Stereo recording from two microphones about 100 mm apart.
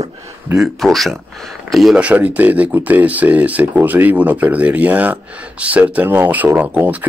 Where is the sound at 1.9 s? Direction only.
15° right (ahead or behind).